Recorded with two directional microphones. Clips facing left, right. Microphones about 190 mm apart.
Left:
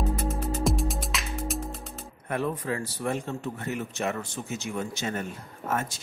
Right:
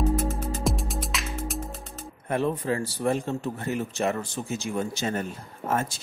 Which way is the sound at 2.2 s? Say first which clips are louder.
Right 3 dB; 30° right (ahead or behind).